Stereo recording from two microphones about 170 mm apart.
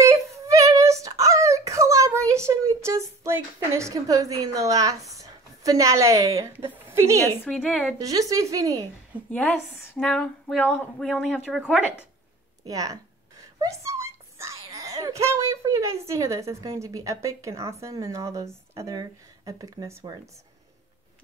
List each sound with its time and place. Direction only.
0.3 s child singing: 20° right (ahead or behind)
5.1 s speech: 20° right (ahead or behind)
7.6 s a woman's voice: 10° left (ahead or behind)
8.0 s speech: 20° right (ahead or behind)
9.1 s a woman's voice: 10° right (ahead or behind)
9.9 s speech: 5° left (ahead or behind)
12.6 s a child's voice: 20° right (ahead or behind)